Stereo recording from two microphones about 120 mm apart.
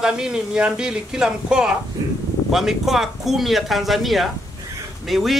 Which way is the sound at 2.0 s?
30° right (ahead or behind).